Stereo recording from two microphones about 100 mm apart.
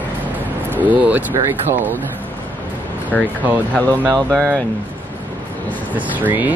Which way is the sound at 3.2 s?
15° right (ahead or behind).